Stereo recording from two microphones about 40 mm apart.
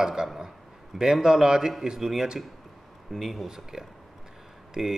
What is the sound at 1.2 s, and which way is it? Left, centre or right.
Speech, centre.